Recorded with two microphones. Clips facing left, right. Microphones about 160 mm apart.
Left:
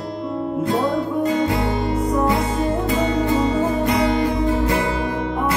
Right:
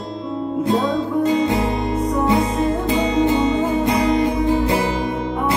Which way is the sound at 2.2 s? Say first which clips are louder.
Right 2 dB; 25° right (ahead or behind).